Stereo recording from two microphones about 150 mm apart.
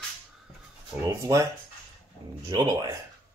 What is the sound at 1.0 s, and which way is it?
Speech, 20° right (ahead or behind).